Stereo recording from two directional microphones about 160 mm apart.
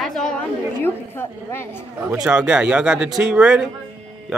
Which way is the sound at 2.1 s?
5° right (ahead or behind).